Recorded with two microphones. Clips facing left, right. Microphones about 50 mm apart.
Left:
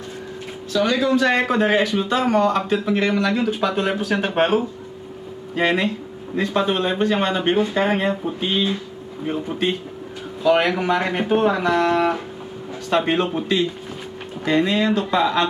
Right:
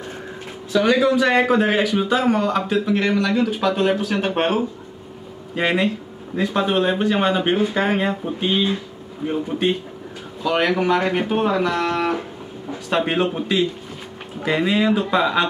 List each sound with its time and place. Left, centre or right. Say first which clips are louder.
0.7 s speech: right 2 dB; centre